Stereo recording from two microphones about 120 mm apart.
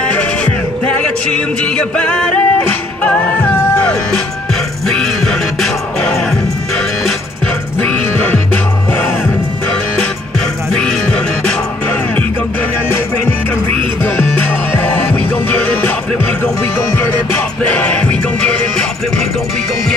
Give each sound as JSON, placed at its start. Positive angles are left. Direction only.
{"t": 0.0, "sound": "music", "side_deg": 10}
{"t": 1.8, "sound": "music", "side_deg": 10}
{"t": 4.8, "sound": "music", "side_deg": 5}
{"t": 10.7, "sound": "music", "side_deg": 5}
{"t": 15.5, "sound": "music", "side_deg": 10}
{"t": 17.6, "sound": "music", "side_deg": 10}